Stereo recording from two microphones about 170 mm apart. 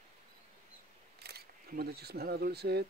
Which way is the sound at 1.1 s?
70° right (ahead or behind).